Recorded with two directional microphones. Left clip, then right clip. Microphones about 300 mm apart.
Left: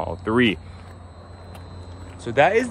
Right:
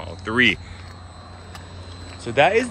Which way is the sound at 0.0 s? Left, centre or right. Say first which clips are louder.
Right 2 dB; centre.